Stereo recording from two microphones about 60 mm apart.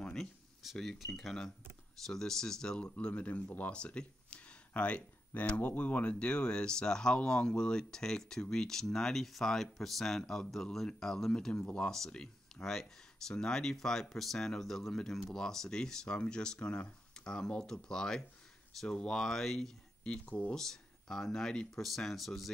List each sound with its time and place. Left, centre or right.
0.0 s a sound: centre
0.6 s speech: centre
20.0 s speech: centre
20.5 s speech: centre